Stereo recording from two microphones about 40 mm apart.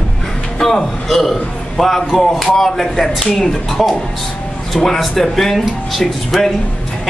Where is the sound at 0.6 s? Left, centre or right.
Centre.